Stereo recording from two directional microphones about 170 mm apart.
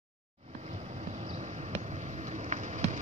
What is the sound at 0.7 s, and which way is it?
Vehicle, 40° right (ahead or behind).